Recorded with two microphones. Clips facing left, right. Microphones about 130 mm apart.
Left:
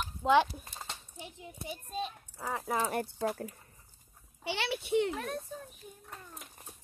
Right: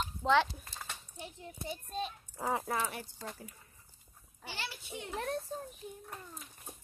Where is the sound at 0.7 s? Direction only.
20° left (ahead or behind).